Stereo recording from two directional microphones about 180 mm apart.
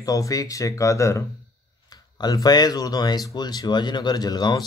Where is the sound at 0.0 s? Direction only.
20° left (ahead or behind).